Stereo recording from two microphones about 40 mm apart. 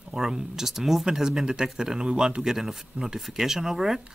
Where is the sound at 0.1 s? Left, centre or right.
Centre.